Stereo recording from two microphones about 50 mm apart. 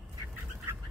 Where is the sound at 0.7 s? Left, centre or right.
Right.